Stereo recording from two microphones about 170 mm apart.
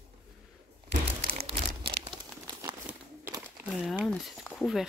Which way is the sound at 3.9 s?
Centre (ahead or behind).